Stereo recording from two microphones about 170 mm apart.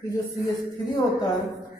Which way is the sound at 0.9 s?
20° left (ahead or behind).